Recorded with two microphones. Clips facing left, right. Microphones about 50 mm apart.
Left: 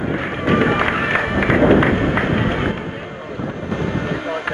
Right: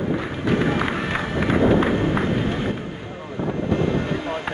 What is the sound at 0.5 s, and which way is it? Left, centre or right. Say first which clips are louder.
Run: left 5 dB; left.